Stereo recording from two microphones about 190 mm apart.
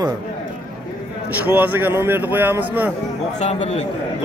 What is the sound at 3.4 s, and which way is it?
Speech, 35° left (ahead or behind).